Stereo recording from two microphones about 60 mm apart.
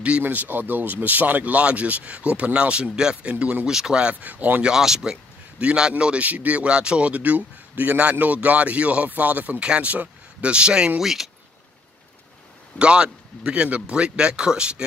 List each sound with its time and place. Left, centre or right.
0.2 s a man's voice: right; by 4.1 s centre
4.1 s speech: right
4.7 s a man's voice: centre
6.2 s a man's voice: right
11.0 s speech: centre
12.7 s a man's voice: centre